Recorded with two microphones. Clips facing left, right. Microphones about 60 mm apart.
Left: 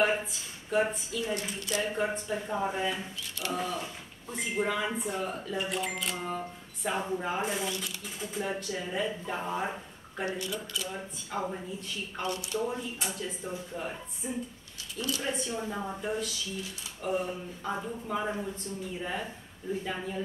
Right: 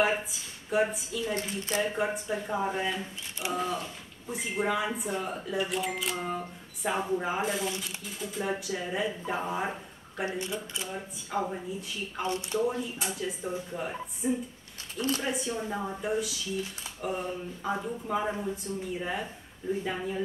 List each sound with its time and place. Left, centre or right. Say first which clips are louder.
0.0 s speech: even; centre
1.3 s speech: right 1 dB; right
1.8 s speech: right 1 dB; centre
3.4 s speech: right 1 dB; right
4.3 s speech: right 1 dB; centre
10.2 s speech: right 1 dB; right
10.9 s speech: right 2 dB; centre
12.2 s speech: right 3 dB; right
12.5 s speech: right 5 dB; centre
14.2 s speech: right 7 dB; centre
15.0 s speech: right 4 dB; right
15.2 s speech: right 1 dB; centre